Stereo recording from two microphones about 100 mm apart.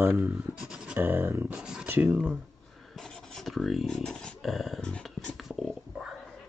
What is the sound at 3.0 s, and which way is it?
Speech, 5° left (ahead or behind).